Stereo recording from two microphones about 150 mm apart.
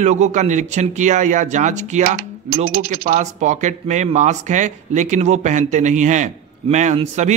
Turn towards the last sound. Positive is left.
turn(degrees=-50)  # may be behind; listen again after turning